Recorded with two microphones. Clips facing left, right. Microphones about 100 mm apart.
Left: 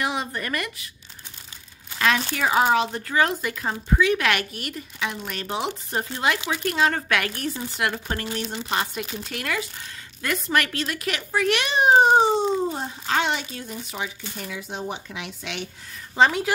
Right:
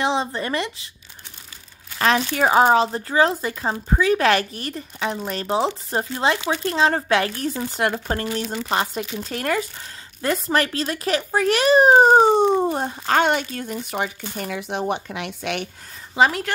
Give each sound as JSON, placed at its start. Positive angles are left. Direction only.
{"t": 0.0, "sound": "speech", "side_deg": -25}
{"t": 2.0, "sound": "speech", "side_deg": -35}
{"t": 7.5, "sound": "speech", "side_deg": -40}
{"t": 12.4, "sound": "speech", "side_deg": -60}
{"t": 16.2, "sound": "a woman's voice", "side_deg": 0}